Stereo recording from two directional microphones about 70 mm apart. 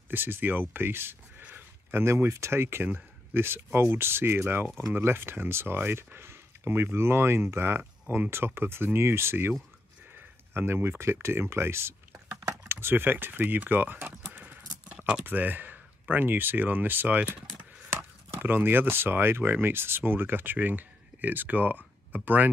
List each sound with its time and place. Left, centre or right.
0.1 s speech: right
10.1 s a sound: right
11.2 s speech: right
12.4 s keys jangling: right
12.8 s speech: right
14.3 s a sound: right
15.2 s speech: right